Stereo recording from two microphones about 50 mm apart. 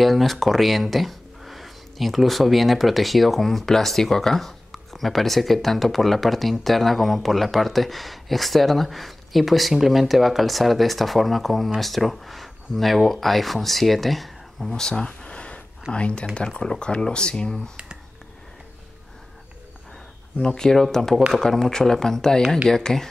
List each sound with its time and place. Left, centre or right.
0.0 s speech: centre
14.7 s a sound: centre
15.9 s speech: left
20.3 s speech: centre